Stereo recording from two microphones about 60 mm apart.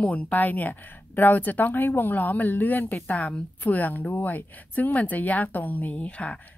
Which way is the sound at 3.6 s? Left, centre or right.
Left.